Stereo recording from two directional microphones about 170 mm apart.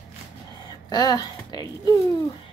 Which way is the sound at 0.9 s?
25° left (ahead or behind).